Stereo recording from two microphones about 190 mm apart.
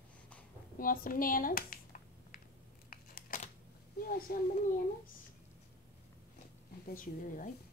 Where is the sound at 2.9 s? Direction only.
50° left (ahead or behind).